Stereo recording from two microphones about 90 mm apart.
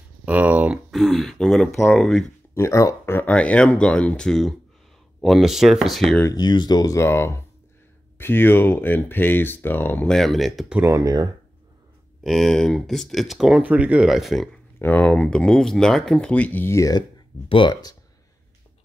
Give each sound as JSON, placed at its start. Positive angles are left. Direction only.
{"t": 0.2, "sound": "a sound", "side_deg": -15}
{"t": 0.9, "sound": "speech", "side_deg": 0}
{"t": 2.5, "sound": "speech", "side_deg": 35}
{"t": 3.3, "sound": "speech", "side_deg": 15}
{"t": 6.3, "sound": "speech", "side_deg": 55}
{"t": 10.0, "sound": "speech", "side_deg": 5}
{"t": 10.8, "sound": "speech", "side_deg": -35}
{"t": 12.2, "sound": "speech", "side_deg": 0}
{"t": 14.0, "sound": "speech", "side_deg": 0}
{"t": 14.8, "sound": "speech", "side_deg": 20}
{"t": 16.7, "sound": "speech", "side_deg": 40}
{"t": 17.5, "sound": "speech", "side_deg": 70}